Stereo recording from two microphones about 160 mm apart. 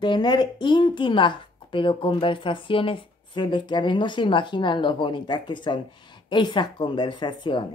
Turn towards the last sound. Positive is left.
turn(degrees=30)  # may be behind; listen again after turning